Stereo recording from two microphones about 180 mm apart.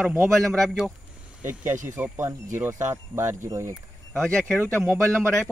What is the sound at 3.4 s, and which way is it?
Speech, 15° right (ahead or behind).